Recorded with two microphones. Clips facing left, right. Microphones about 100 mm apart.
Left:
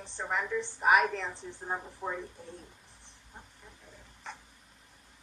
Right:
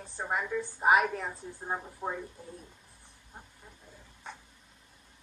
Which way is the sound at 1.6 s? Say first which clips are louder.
Right 1 dB; centre (ahead or behind).